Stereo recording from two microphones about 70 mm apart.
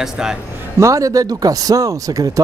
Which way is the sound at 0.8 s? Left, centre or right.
Right.